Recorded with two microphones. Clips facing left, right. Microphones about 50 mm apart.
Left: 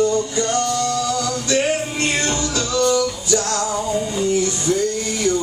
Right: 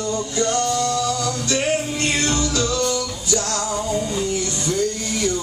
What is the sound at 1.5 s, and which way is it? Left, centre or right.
Music, left.